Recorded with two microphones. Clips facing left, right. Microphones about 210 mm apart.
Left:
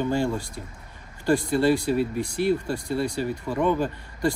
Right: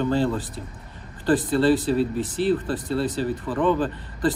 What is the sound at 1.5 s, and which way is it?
A man's voice, 10° left (ahead or behind).